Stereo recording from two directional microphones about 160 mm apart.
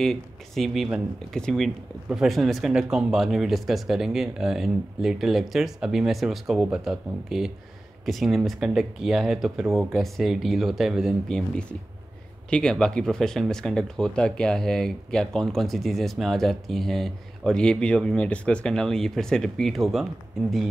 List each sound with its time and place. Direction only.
0.0 s speech: centre (ahead or behind)